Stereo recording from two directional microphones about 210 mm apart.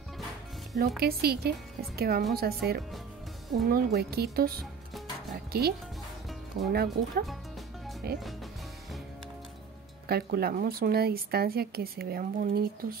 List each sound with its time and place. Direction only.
0.7 s speech: 50° right (ahead or behind)
10.0 s speech: 50° right (ahead or behind)